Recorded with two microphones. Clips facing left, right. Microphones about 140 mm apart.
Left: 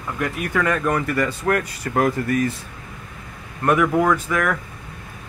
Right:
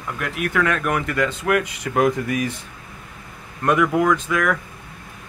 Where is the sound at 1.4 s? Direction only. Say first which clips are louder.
Right 1 dB; 5° right (ahead or behind).